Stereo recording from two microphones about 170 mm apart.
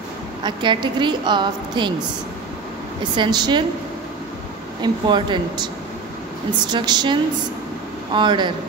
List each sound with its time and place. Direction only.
0.4 s a woman's voice: 25° right (ahead or behind)
3.2 s a woman's voice: 25° right (ahead or behind)
4.8 s a woman's voice: 30° right (ahead or behind)
6.7 s a woman's voice: 25° right (ahead or behind)